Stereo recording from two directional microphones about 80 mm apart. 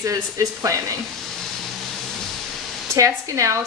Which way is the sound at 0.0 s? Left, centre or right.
Right.